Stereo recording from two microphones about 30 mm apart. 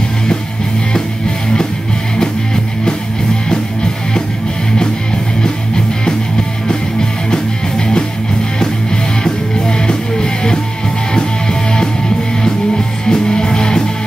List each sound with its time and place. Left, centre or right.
2.1 s music: left
9.2 s music: left